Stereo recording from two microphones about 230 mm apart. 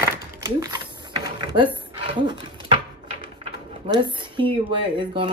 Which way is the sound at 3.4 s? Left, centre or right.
Centre.